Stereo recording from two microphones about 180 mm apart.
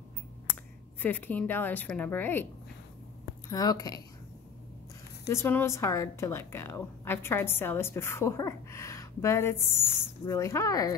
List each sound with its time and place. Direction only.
1.0 s a woman's voice: 10° left (ahead or behind)
3.4 s a woman's voice: 20° left (ahead or behind)
5.3 s a woman's voice: 10° left (ahead or behind)